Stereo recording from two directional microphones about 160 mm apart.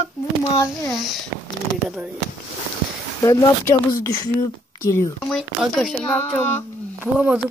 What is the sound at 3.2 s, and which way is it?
Speech, 20° left (ahead or behind).